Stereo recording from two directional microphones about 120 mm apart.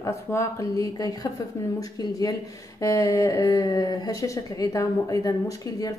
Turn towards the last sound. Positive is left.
turn(degrees=30)  # may be behind; listen again after turning